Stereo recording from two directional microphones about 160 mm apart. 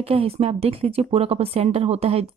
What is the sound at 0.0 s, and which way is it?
Speech, 40° right (ahead or behind).